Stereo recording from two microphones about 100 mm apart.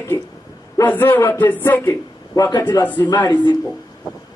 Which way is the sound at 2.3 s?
40° left (ahead or behind).